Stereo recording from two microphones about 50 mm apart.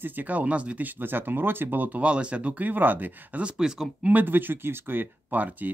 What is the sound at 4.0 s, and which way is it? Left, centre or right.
Speech, right.